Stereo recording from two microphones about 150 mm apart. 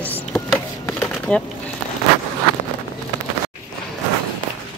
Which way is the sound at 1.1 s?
5° left (ahead or behind).